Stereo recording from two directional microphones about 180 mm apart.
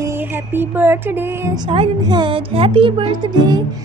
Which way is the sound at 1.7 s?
25° right (ahead or behind).